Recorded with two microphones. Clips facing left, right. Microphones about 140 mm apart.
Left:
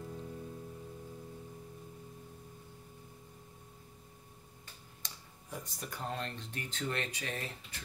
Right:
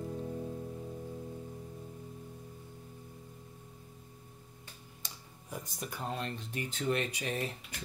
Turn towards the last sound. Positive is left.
turn(degrees=-15)  # may be behind; listen again after turning